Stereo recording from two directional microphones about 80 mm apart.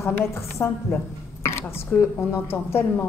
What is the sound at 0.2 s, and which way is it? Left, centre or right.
Speech, left.